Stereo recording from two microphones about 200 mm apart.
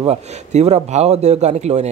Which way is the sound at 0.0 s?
35° right (ahead or behind).